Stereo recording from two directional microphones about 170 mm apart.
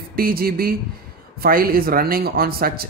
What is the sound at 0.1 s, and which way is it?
Speech, 60° right (ahead or behind).